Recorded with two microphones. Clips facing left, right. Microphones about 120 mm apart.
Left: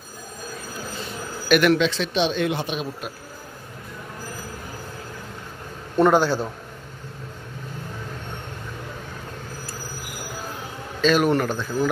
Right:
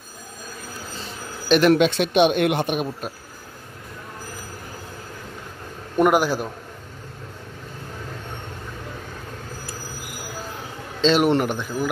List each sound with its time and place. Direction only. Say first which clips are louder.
1.7 s speech: right 3 dB; 55° right (ahead or behind)
5.9 s a man's voice: left 1 dB; 10° right (ahead or behind)
11.0 s speech: right 1 dB; 25° right (ahead or behind)